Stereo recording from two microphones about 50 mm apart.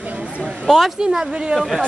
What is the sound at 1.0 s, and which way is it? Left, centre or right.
Speech, centre.